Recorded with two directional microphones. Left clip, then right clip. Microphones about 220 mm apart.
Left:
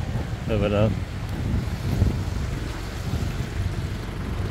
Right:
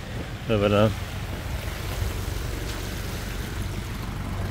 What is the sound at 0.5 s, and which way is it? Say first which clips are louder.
Speech: right 2 dB; 25° right (ahead or behind).